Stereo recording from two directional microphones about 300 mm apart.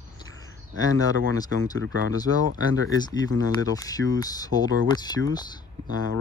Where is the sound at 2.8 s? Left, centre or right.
Centre.